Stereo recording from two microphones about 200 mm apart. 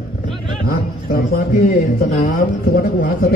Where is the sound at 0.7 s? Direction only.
50° left (ahead or behind).